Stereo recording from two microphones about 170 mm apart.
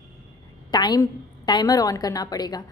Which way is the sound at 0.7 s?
25° left (ahead or behind).